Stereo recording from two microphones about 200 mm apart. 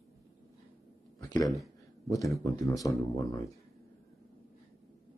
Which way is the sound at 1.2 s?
20° left (ahead or behind).